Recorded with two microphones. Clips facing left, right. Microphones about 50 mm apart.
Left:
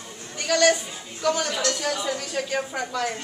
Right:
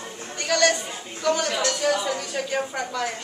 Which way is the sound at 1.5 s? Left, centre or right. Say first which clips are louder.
Right 3 dB; centre.